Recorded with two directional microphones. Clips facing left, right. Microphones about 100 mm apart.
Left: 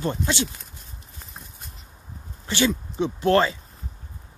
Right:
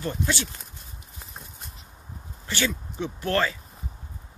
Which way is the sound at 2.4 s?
20° left (ahead or behind).